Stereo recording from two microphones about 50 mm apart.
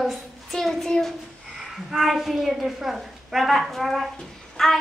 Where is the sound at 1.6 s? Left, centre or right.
Centre.